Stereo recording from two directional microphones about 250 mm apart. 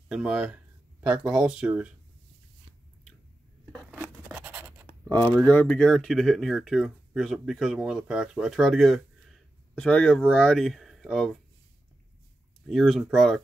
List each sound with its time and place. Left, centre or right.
0.1 s speech: centre
3.9 s scratch: centre
5.3 s speech: centre
12.6 s speech: centre